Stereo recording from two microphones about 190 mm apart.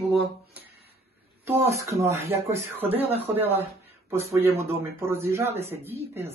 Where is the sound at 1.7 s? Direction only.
15° right (ahead or behind).